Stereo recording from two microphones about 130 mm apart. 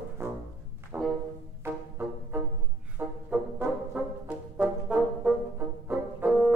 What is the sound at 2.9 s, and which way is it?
Brass instrument, 10° right (ahead or behind).